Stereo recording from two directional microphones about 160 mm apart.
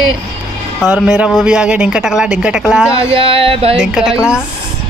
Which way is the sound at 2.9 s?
35° right (ahead or behind).